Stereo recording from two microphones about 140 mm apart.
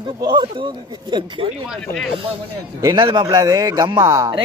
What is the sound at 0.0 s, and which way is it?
A man's voice, 30° right (ahead or behind).